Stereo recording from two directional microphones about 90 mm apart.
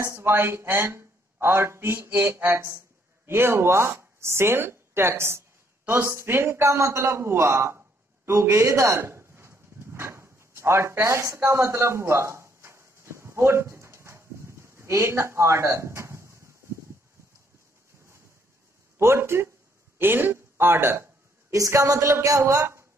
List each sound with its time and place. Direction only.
0.0 s a woman's voice: 30° right (ahead or behind)
8.3 s a sound: 30° right (ahead or behind)
18.9 s a woman's voice: 30° right (ahead or behind)